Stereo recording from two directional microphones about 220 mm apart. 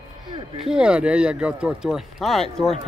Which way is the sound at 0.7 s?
5° right (ahead or behind).